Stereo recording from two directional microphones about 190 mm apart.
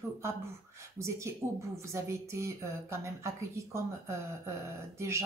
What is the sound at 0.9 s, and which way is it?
Speech, 15° right (ahead or behind).